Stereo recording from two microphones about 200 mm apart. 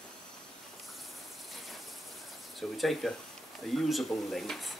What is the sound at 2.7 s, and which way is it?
Speech, centre (ahead or behind).